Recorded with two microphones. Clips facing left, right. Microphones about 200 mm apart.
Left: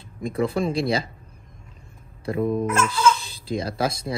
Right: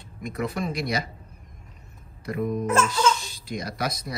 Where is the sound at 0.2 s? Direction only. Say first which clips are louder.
Left 6 dB; 30° left (ahead or behind).